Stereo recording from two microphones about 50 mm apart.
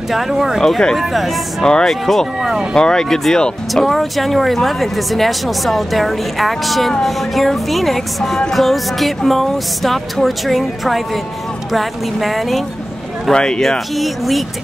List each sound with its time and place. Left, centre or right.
0.1 s speech: centre
0.6 s speech: centre
0.9 s speech: centre
1.6 s speech: centre
1.9 s speech: centre
13.3 s speech: centre
13.6 s speech: centre